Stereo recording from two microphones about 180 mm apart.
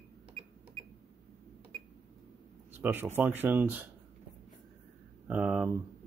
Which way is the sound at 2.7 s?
10° right (ahead or behind).